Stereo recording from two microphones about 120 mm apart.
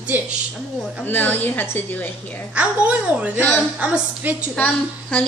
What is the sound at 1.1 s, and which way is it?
Speech, 15° left (ahead or behind).